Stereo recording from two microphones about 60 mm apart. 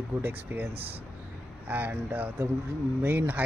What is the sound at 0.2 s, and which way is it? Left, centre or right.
Speech, right.